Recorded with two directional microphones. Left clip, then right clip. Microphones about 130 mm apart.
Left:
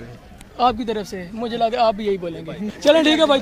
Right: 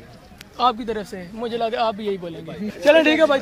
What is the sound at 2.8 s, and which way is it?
Speech, 35° left (ahead or behind).